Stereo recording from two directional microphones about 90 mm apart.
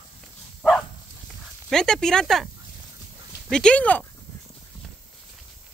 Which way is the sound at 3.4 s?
10° left (ahead or behind).